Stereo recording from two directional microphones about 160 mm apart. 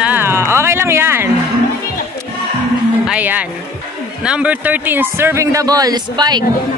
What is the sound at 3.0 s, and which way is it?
A man's voice, 10° right (ahead or behind).